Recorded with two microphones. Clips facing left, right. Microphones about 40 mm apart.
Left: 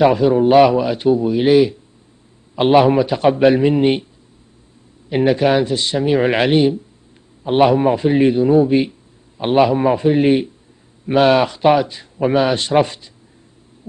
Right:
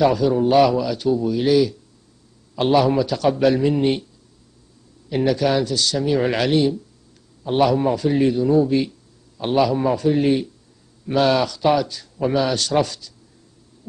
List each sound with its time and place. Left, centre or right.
0.0 s a man's voice: left
5.1 s a man's voice: left